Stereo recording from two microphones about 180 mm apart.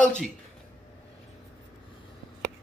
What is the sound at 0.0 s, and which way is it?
Speech, 5° left (ahead or behind).